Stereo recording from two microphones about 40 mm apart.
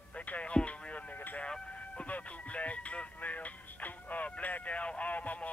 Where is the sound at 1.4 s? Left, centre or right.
Left.